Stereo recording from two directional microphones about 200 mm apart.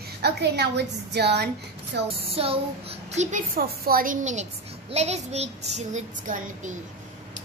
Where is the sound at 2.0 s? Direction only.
30° right (ahead or behind).